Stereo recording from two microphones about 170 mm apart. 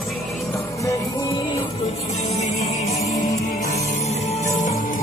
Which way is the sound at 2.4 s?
40° left (ahead or behind).